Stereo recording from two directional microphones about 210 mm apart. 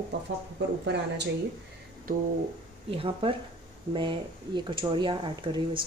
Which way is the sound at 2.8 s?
25° right (ahead or behind).